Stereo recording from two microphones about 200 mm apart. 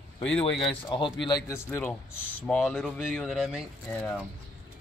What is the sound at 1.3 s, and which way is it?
Speech, 15° left (ahead or behind).